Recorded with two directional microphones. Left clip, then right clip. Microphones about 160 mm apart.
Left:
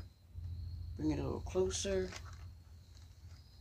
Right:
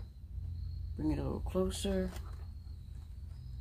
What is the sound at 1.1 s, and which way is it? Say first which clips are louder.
Speech: right 1 dB; 35° right (ahead or behind).